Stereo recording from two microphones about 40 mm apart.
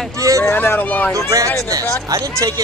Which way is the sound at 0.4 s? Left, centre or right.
Left.